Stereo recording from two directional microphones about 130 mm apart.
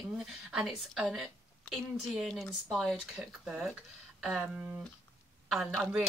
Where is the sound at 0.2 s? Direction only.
5° right (ahead or behind).